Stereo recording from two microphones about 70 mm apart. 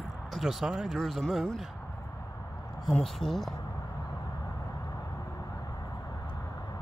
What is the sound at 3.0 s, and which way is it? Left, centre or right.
Speech, centre.